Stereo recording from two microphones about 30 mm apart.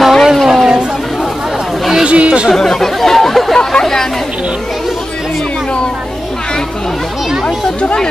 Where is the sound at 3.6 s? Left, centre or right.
Left.